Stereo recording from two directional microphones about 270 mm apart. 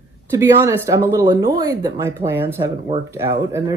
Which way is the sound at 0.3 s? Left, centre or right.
Centre.